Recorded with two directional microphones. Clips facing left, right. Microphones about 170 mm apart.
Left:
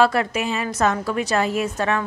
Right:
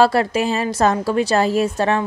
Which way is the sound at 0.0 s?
35° right (ahead or behind).